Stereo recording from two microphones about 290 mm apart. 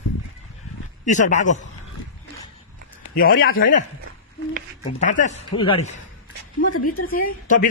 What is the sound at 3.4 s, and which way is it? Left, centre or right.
Speech, left.